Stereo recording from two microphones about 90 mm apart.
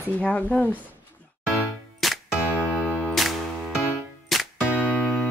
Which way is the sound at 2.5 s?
15° left (ahead or behind).